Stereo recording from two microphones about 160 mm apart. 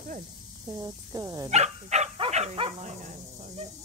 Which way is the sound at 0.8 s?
20° right (ahead or behind).